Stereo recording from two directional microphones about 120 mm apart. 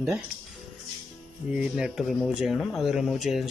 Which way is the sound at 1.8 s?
5° right (ahead or behind).